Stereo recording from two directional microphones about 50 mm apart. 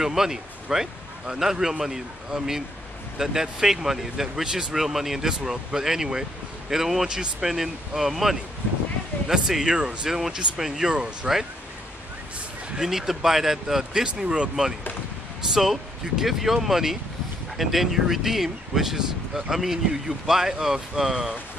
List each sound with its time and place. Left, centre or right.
0.0 s speech: centre
12.7 s speech: centre
15.5 s speech: centre